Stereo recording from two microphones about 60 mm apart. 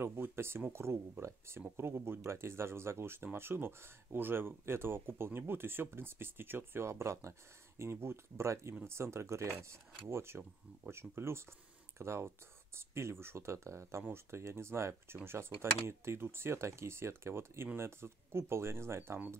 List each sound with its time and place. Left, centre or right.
0.0 s speech: right